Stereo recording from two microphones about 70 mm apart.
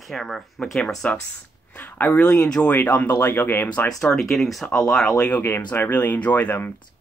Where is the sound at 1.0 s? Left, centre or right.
Left.